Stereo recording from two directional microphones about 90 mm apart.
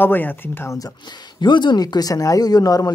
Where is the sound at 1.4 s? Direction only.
60° left (ahead or behind); by 2.9 s 45° left (ahead or behind).